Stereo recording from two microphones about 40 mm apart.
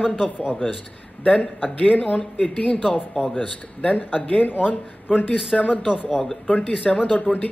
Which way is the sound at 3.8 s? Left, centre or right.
Left.